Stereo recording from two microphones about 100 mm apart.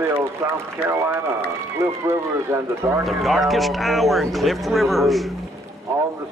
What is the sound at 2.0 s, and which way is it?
Speech, 25° right (ahead or behind).